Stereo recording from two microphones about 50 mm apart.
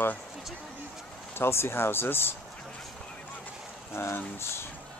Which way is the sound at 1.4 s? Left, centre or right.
Left.